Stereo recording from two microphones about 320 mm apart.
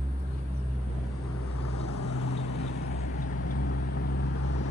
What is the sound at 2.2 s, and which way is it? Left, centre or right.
Vehicle, left.